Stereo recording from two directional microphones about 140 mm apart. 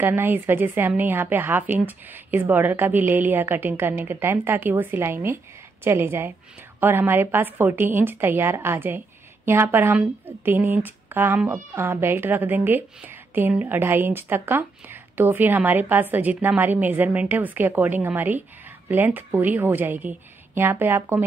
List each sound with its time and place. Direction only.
0.0 s a woman's voice: 15° right (ahead or behind)